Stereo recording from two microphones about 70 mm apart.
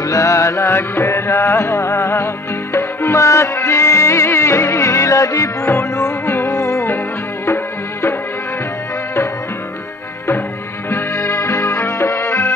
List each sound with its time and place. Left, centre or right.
0.0 s music: left
10.9 s music: left